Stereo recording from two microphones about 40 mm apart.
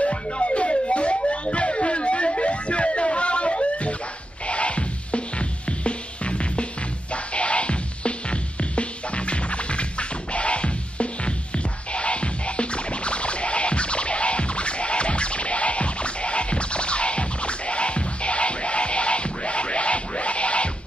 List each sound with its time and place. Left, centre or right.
0.0 s music: left